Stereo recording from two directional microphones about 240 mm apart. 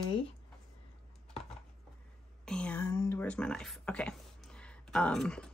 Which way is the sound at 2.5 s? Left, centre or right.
Centre.